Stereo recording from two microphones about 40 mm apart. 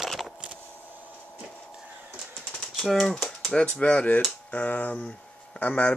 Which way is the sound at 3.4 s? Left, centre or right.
Left.